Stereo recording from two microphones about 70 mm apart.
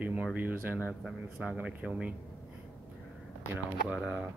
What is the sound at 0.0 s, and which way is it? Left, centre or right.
Speech, centre.